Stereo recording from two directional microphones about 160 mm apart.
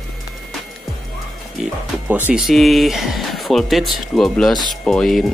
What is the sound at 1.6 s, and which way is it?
Speech, 10° right (ahead or behind).